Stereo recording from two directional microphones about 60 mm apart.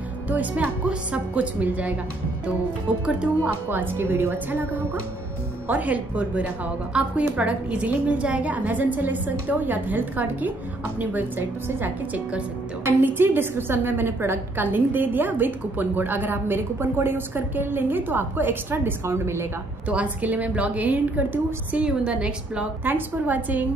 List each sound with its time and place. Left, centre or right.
0.3 s a woman's voice: right
3.7 s a woman's voice: right
5.7 s a woman's voice: right
12.8 s a woman's voice: right
19.9 s a woman's voice: right
22.8 s a woman's voice: right